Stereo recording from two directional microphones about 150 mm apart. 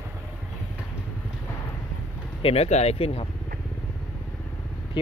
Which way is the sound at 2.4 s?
45° left (ahead or behind).